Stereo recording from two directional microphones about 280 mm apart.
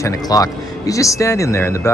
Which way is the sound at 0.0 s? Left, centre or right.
Centre.